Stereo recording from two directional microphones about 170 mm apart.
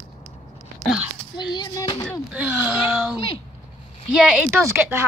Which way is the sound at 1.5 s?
25° left (ahead or behind).